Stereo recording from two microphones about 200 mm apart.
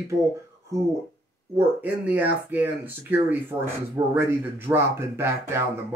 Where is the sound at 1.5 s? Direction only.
10° right (ahead or behind).